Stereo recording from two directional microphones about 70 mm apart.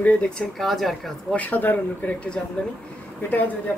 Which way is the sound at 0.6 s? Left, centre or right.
Centre.